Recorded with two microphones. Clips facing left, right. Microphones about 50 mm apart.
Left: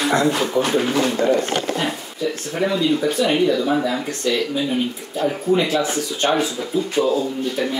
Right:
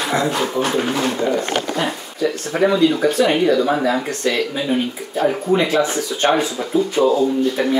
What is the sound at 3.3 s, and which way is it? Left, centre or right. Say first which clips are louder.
Speech: right 2 dB; right.